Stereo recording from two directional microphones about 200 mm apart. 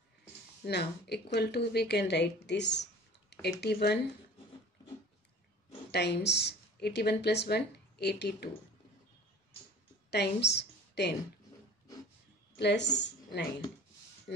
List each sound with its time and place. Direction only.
0.7 s speech: 55° left (ahead or behind)
5.9 s a woman's voice: 55° left (ahead or behind)
10.1 s a woman's voice: 55° left (ahead or behind)
12.5 s speech: 60° left (ahead or behind)